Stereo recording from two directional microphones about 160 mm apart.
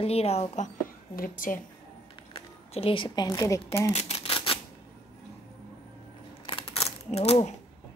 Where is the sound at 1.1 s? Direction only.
60° left (ahead or behind).